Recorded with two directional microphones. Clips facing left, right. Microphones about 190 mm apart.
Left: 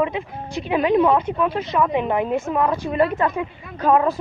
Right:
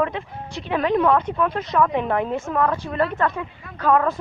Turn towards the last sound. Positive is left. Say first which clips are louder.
# left 2 dB
turn(degrees=15)  # may be behind; listen again after turning